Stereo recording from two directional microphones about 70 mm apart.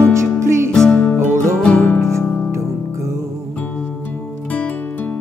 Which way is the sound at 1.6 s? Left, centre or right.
Left.